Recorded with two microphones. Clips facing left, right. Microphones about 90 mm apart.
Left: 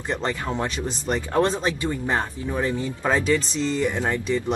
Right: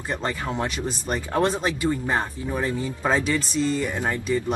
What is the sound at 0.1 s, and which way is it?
Speech, 25° left (ahead or behind).